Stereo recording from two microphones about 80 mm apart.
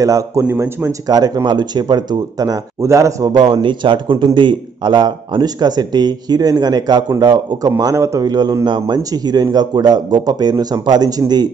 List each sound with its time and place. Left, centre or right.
0.0 s speech: right
1.0 s a man's voice: right
2.8 s speech: right
3.3 s a man's voice: right
7.8 s a man's voice: right
8.3 s a man's voice: right
8.6 s a man's voice: right